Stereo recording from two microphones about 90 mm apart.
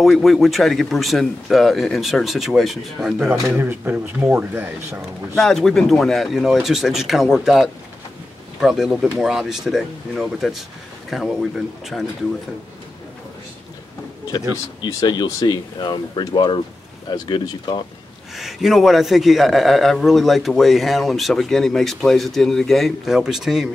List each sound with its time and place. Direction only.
0.0 s a man's voice: centre (ahead or behind)
3.5 s speech: 20° right (ahead or behind)
5.3 s a man's voice: 5° left (ahead or behind)
14.9 s speech: 45° left (ahead or behind)
18.3 s a man's voice: centre (ahead or behind)